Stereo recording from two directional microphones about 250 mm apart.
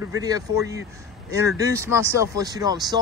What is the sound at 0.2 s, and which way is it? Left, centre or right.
Speech, centre.